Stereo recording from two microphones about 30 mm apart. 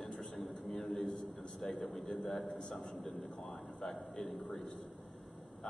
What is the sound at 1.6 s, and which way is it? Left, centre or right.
Speech, centre.